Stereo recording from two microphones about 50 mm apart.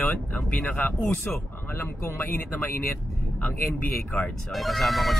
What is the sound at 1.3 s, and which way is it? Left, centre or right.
Speech, left.